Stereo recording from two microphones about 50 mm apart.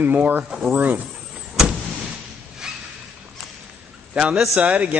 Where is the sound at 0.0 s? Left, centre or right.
Right.